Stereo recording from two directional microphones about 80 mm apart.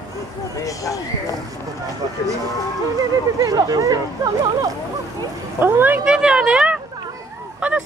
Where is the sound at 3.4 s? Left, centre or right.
Right.